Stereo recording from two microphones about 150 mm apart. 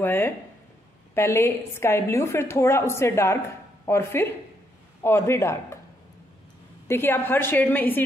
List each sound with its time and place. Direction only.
0.0 s a woman's voice: 15° left (ahead or behind)
6.9 s a woman's voice: 15° left (ahead or behind)